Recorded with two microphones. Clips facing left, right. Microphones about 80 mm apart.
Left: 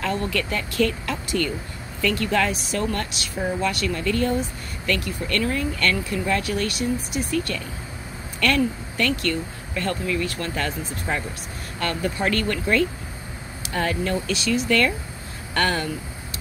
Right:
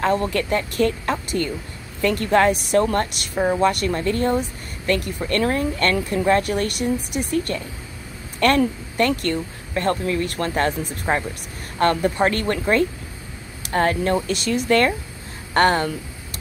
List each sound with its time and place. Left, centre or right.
0.0 s speech: right